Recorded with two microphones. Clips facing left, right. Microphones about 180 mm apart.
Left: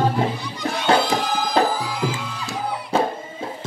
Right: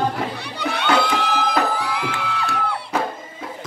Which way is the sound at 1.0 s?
65° right (ahead or behind).